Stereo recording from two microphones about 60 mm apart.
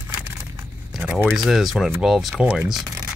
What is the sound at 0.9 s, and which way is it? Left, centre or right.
Speech, centre.